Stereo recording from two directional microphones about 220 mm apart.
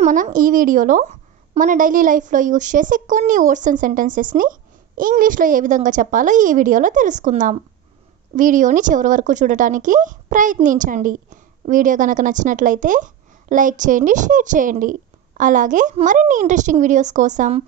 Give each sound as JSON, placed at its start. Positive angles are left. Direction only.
{"t": 0.0, "sound": "a woman's voice", "side_deg": -35}